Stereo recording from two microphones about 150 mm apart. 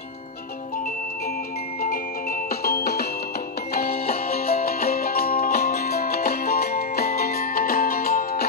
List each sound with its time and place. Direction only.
2.6 s music: 90° left; by 8.5 s 75° left (ahead or behind)